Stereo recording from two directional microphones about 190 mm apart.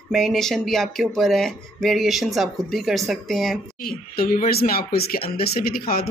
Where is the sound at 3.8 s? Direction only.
50° left (ahead or behind).